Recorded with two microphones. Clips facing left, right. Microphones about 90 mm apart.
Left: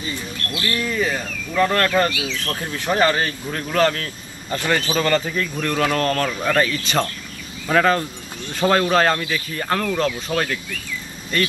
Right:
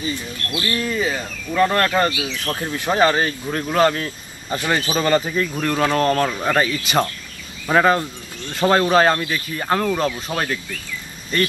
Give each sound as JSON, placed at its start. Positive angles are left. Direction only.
{"t": 0.1, "sound": "speech", "side_deg": -20}